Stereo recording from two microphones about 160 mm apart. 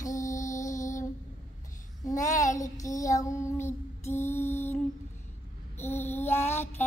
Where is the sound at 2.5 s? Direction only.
20° left (ahead or behind).